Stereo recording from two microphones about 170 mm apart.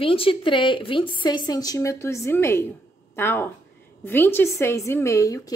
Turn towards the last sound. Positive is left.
turn(degrees=20)  # may be behind; listen again after turning